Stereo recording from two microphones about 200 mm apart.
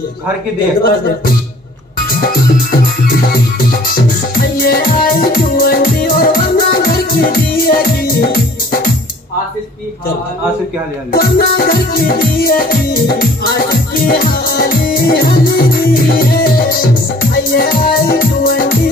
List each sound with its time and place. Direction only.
0.8 s music: 50° left (ahead or behind)
11.1 s music: 45° left (ahead or behind)